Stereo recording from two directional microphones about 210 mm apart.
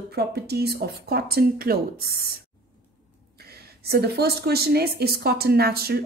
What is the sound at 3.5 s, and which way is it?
Speech, 50° right (ahead or behind).